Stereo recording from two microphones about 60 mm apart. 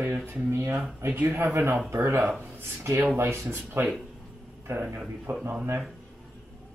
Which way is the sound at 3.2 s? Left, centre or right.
Right.